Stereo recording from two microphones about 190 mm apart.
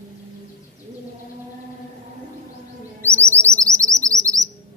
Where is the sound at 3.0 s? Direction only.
15° right (ahead or behind).